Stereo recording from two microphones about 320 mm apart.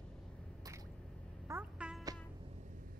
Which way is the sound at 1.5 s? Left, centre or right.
Centre.